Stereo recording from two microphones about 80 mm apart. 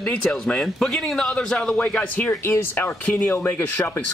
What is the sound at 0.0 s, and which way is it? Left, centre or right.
Speech, centre.